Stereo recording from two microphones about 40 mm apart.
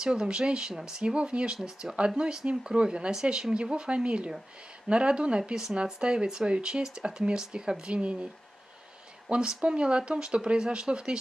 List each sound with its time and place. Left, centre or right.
0.0 s speech: right
1.6 s speech: centre; by 8.3 s right
9.5 s speech: right